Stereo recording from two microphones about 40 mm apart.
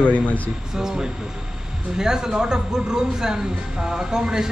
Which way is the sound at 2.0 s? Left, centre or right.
Centre.